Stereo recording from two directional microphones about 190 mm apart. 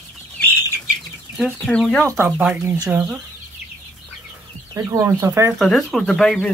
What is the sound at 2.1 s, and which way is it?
Speech, 10° right (ahead or behind).